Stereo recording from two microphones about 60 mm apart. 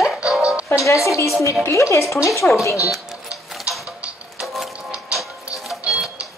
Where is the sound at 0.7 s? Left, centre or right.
Left.